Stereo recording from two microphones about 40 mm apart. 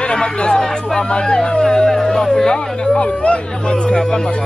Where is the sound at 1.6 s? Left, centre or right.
Centre.